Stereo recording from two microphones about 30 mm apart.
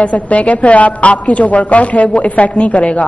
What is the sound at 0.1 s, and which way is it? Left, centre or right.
A man's voice, left.